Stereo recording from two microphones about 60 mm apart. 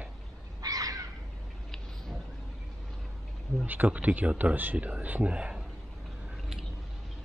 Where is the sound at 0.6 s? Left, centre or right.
Right.